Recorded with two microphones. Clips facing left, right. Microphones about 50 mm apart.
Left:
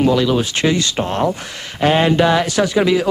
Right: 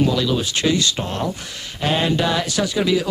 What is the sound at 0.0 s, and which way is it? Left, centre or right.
Speech, left.